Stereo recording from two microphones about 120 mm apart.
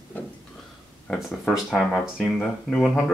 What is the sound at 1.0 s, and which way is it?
Speech, 10° left (ahead or behind).